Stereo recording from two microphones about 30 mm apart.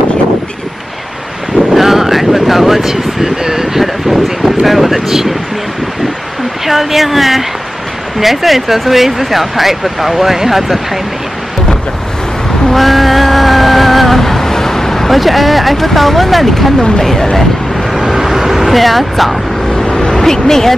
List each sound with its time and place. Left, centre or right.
1.7 s vehicle: centre
3.8 s a sound: centre
4.6 s speech: centre
6.6 s speech: centre
12.7 s vehicle: centre
15.0 s speech: centre
17.9 s vehicle: centre
19.7 s vehicle: left
20.2 s speech: centre